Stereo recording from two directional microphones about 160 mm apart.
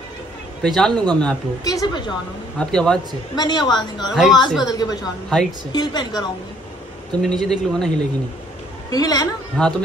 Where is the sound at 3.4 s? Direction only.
25° left (ahead or behind).